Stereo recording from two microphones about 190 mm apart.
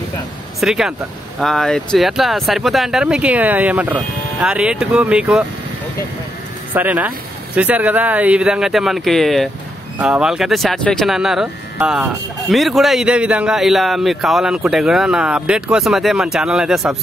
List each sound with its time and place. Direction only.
0.6 s speech: centre (ahead or behind)
6.7 s speech: 10° right (ahead or behind)